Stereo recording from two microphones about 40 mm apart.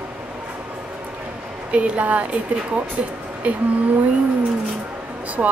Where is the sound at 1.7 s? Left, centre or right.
Right.